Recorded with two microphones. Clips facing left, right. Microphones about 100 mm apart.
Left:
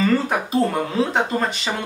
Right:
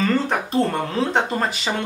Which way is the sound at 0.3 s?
5° left (ahead or behind).